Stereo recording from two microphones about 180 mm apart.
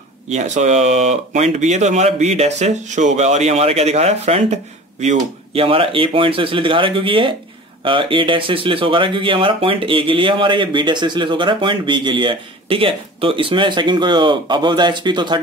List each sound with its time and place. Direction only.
0.3 s speech: 40° right (ahead or behind)